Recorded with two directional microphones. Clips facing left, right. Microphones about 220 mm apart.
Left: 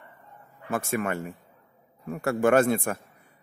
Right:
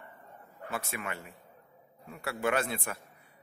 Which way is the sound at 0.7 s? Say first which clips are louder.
Left 10 dB; 50° left (ahead or behind).